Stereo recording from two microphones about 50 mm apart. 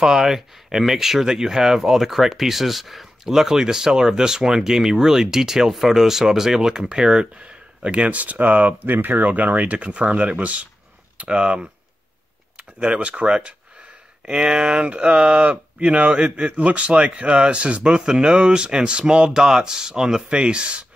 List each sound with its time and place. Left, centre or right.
0.0 s speech: centre